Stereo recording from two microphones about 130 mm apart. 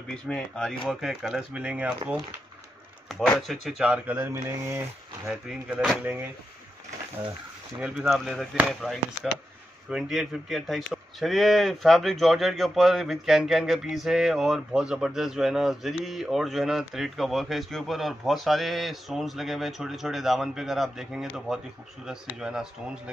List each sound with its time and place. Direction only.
0.1 s speech: 5° left (ahead or behind)
4.2 s speech: 20° right (ahead or behind)
5.3 s speech: 5° right (ahead or behind)
8.0 s speech: centre (ahead or behind)